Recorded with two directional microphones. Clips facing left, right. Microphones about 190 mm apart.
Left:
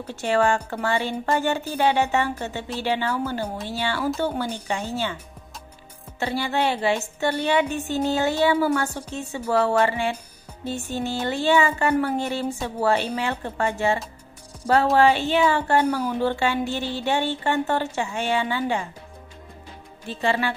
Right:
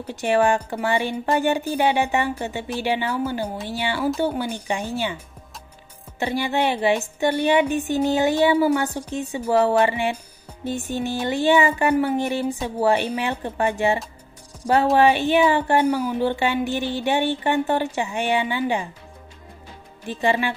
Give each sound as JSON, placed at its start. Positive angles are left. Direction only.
{"t": 0.0, "sound": "speech", "side_deg": -15}
{"t": 6.1, "sound": "speech", "side_deg": -15}
{"t": 15.0, "sound": "speech", "side_deg": -15}
{"t": 20.1, "sound": "speech", "side_deg": -15}